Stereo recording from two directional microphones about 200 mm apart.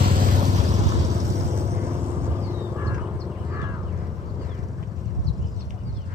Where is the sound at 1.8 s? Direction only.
10° right (ahead or behind).